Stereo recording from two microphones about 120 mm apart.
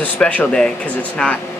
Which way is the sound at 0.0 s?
10° left (ahead or behind).